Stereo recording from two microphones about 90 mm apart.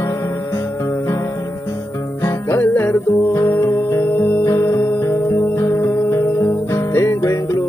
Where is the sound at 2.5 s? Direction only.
25° left (ahead or behind).